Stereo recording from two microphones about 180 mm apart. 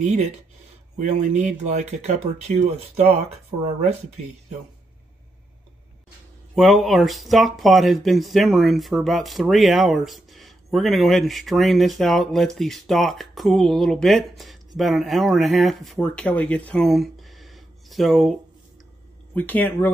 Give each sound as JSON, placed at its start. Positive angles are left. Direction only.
{"t": 0.0, "sound": "speech", "side_deg": -40}
{"t": 6.5, "sound": "speech", "side_deg": 0}